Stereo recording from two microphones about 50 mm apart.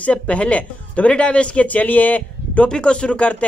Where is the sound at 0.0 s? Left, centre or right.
Left.